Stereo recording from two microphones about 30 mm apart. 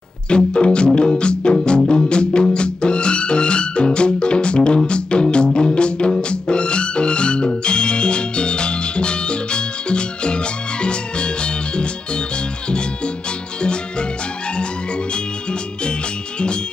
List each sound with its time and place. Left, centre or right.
0.5 s music: left